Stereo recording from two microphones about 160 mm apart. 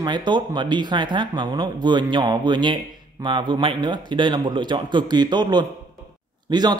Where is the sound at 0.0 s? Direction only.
25° right (ahead or behind).